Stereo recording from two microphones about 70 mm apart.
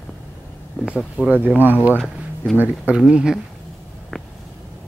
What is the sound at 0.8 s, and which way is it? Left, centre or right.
Speech, centre.